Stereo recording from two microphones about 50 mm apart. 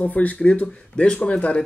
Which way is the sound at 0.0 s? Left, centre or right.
Left.